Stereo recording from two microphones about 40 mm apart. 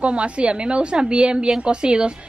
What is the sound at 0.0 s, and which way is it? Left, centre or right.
A woman's voice, right.